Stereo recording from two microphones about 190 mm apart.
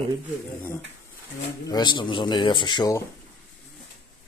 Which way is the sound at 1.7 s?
25° left (ahead or behind).